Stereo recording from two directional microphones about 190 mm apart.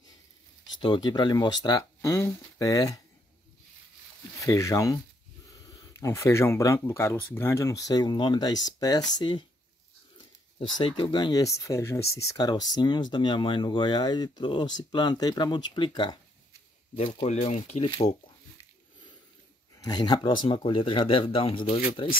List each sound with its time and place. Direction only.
0.7 s speech: 25° left (ahead or behind)
4.4 s speech: 15° left (ahead or behind)
10.8 s speech: 25° left (ahead or behind)
16.9 s speech: 35° left (ahead or behind)
19.8 s speech: 20° left (ahead or behind)